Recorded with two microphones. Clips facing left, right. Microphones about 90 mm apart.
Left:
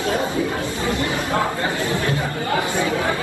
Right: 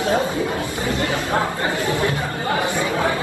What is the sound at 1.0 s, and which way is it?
Chatter, 20° left (ahead or behind).